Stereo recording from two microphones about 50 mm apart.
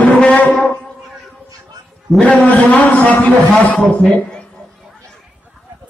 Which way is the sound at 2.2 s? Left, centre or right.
Left.